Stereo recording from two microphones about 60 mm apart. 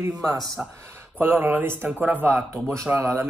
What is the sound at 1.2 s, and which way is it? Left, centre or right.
Speech, right.